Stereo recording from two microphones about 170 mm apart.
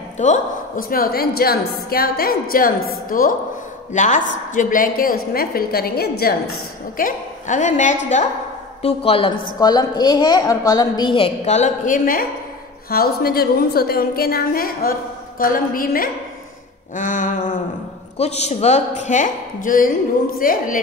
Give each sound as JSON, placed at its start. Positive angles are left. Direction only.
{"t": 0.2, "sound": "a woman's voice", "side_deg": 50}
{"t": 7.0, "sound": "a woman's voice", "side_deg": 50}
{"t": 8.8, "sound": "a woman's voice", "side_deg": 35}
{"t": 9.6, "sound": "a woman's voice", "side_deg": 25}